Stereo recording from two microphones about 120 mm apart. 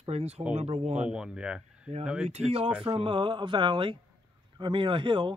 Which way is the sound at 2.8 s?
45° right (ahead or behind).